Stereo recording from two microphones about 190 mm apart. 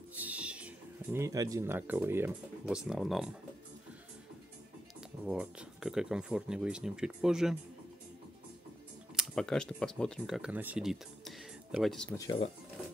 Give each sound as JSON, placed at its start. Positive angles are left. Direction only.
{"t": 0.2, "sound": "speech", "side_deg": -5}
{"t": 5.2, "sound": "speech", "side_deg": -5}
{"t": 9.1, "sound": "speech", "side_deg": 0}
{"t": 12.1, "sound": "speech", "side_deg": 15}